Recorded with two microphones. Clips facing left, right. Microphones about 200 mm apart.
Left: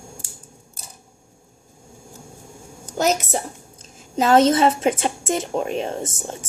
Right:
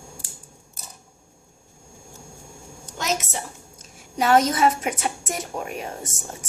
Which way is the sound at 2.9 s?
40° left (ahead or behind).